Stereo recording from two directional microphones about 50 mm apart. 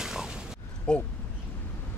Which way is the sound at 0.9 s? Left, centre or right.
Centre.